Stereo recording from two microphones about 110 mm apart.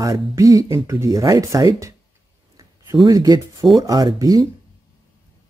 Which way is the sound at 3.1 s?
30° right (ahead or behind).